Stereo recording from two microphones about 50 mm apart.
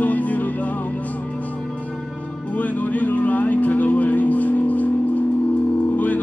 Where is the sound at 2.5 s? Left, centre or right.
Left.